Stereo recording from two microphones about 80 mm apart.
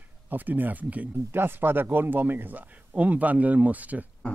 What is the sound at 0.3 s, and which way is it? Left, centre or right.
Speech, right.